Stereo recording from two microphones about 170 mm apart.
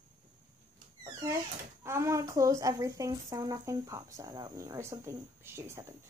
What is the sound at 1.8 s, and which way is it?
A woman's voice, 15° right (ahead or behind).